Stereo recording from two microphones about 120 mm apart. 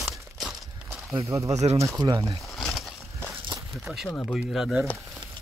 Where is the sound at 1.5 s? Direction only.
70° right (ahead or behind).